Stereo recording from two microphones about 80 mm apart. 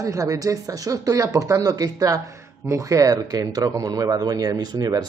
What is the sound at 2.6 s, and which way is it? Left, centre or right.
Speech, right.